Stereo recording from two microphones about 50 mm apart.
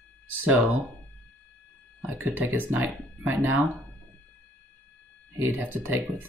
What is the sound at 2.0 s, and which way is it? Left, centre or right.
Speech, right.